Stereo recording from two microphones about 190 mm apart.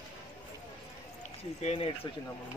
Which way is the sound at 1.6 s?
35° left (ahead or behind).